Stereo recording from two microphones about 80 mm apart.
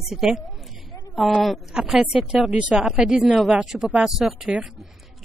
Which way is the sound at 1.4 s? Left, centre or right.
Centre.